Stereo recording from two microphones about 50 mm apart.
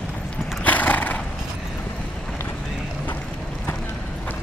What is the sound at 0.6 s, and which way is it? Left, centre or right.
Horse, left.